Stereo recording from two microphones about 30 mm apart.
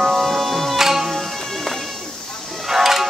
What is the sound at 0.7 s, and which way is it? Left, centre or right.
Music, centre.